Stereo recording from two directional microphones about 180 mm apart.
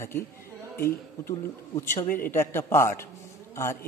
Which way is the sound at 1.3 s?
20° left (ahead or behind).